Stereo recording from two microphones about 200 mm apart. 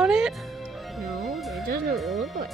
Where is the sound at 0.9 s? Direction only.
Centre (ahead or behind).